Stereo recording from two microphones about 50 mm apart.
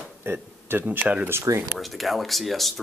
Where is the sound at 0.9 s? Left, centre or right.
Right.